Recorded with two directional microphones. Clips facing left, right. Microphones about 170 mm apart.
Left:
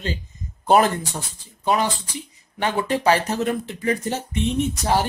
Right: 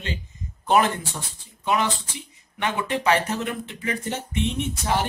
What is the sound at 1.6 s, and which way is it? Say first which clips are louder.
A man's voice: left 2 dB; 35° left (ahead or behind).